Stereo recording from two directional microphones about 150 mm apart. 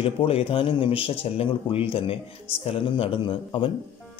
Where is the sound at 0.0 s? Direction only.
40° left (ahead or behind).